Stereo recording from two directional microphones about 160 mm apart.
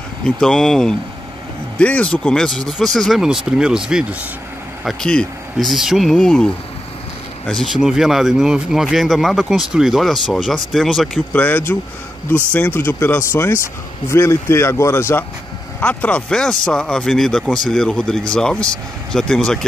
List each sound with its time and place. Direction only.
0.2 s speech: 5° left (ahead or behind)
4.8 s speech: 5° left (ahead or behind)